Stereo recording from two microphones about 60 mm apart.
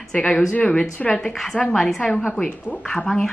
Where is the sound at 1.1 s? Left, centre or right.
Centre.